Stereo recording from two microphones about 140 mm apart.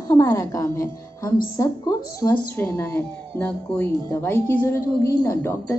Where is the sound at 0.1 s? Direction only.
20° left (ahead or behind).